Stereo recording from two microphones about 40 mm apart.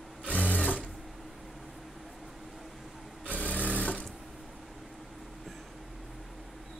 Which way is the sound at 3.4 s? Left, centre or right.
Left.